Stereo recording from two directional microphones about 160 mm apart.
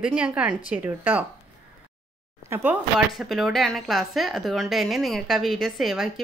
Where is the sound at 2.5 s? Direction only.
15° right (ahead or behind).